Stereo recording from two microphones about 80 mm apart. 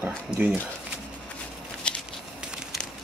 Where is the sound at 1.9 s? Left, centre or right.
Centre.